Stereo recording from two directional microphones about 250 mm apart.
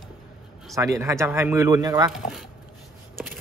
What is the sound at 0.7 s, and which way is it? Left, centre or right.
Speech, centre.